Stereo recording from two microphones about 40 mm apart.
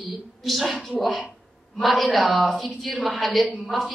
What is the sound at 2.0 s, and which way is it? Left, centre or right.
A man's voice, centre.